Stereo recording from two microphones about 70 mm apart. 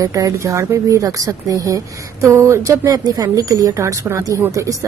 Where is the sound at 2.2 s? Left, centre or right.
Right.